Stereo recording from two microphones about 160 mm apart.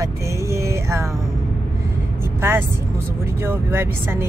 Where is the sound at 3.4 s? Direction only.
15° right (ahead or behind).